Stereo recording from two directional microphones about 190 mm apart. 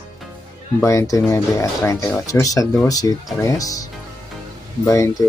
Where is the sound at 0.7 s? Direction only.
15° left (ahead or behind).